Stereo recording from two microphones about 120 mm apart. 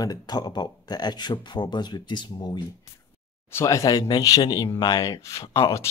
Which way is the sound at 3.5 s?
25° left (ahead or behind).